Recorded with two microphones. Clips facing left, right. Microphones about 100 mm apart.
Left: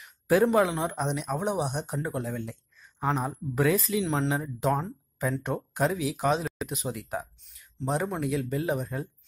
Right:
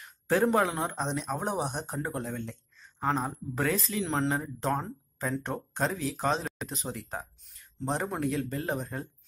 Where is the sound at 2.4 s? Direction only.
15° left (ahead or behind).